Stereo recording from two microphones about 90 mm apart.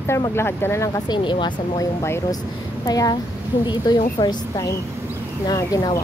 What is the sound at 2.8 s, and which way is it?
A woman's voice, 45° left (ahead or behind).